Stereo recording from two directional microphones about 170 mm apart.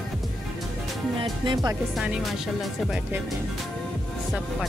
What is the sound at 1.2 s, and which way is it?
Speech, 30° right (ahead or behind).